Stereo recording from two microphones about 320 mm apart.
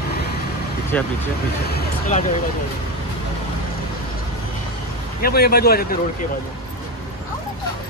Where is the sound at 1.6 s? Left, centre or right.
Left.